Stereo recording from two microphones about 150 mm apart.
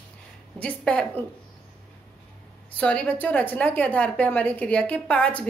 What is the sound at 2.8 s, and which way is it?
A woman's voice, 10° left (ahead or behind).